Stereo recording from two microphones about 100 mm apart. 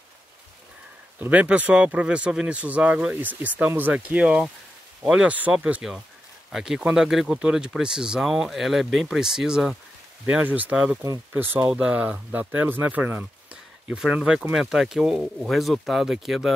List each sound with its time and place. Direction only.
1.2 s speech: 15° right (ahead or behind)
10.2 s speech: 15° right (ahead or behind)